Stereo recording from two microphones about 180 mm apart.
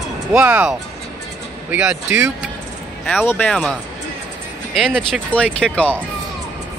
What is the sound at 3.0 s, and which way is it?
Speech, 10° left (ahead or behind).